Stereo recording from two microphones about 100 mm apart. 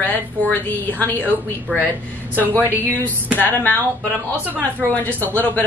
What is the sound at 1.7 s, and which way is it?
Speech, 15° right (ahead or behind).